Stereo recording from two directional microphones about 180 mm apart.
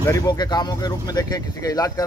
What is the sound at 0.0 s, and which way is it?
Speech, 20° left (ahead or behind).